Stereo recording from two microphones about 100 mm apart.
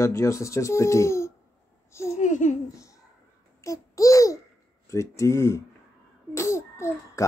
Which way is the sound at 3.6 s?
30° left (ahead or behind).